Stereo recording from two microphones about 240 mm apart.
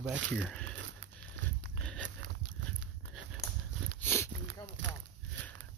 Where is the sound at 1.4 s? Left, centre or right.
Right.